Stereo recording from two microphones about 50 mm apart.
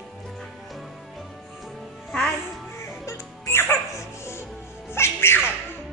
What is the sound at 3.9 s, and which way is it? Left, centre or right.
Music, left.